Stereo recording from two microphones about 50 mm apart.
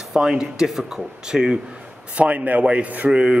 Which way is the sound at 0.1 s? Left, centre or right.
Centre.